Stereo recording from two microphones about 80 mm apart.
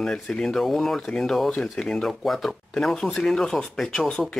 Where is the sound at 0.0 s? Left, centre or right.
Centre.